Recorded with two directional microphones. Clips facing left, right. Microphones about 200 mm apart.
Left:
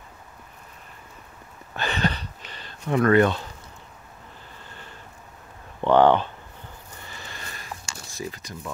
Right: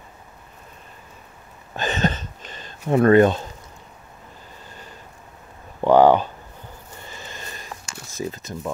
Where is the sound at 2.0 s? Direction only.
45° right (ahead or behind).